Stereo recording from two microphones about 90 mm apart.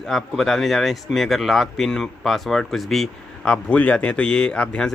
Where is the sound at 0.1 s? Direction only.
Centre (ahead or behind).